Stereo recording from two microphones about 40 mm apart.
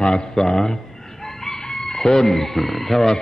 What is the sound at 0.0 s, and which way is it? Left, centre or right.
A man's voice, centre.